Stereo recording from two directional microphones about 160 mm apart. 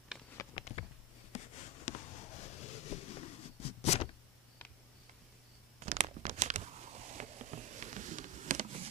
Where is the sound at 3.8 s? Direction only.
40° left (ahead or behind).